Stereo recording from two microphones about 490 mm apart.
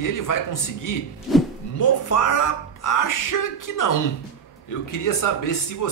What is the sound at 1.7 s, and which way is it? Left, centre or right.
Speech, left.